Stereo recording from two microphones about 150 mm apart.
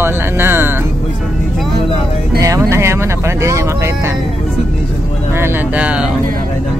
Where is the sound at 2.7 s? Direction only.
20° right (ahead or behind).